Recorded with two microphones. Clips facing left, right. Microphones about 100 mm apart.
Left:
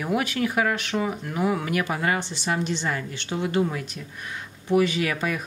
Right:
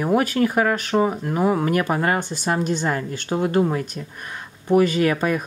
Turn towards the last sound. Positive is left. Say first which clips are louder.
# right 6 dB
turn(degrees=-45)  # may be behind; listen again after turning